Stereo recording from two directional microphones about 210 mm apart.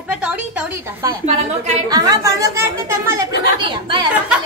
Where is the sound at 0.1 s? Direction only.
5° right (ahead or behind).